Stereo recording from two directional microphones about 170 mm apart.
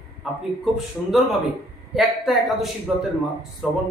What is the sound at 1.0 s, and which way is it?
A man's voice, 10° left (ahead or behind).